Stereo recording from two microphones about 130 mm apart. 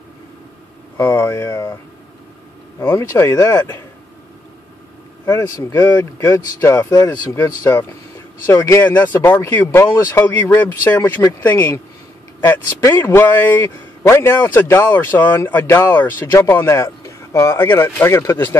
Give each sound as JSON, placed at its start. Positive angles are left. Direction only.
{"t": 0.9, "sound": "speech", "side_deg": 20}
{"t": 2.9, "sound": "speech", "side_deg": 20}
{"t": 5.2, "sound": "a man's voice", "side_deg": 25}